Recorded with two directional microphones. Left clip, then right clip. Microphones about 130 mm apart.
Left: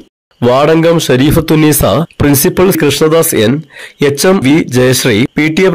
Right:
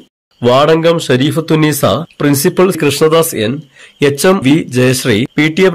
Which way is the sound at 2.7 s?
15° left (ahead or behind).